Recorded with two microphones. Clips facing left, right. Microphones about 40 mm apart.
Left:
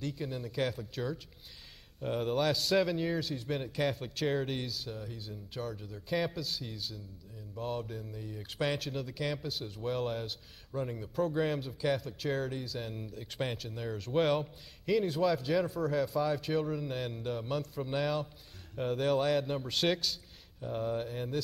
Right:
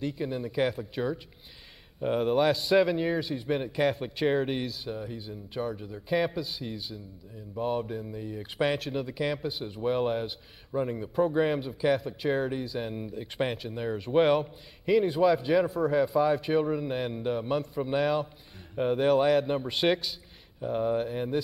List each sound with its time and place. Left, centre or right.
0.0 s a man's voice: centre